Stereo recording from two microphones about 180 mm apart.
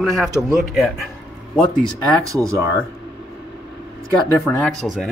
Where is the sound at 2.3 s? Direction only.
20° right (ahead or behind).